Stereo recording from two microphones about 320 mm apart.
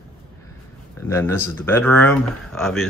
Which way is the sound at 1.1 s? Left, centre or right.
Centre.